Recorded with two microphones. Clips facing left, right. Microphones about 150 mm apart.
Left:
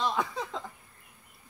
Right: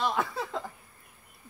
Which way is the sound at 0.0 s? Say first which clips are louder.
Right 1 dB; 5° right (ahead or behind).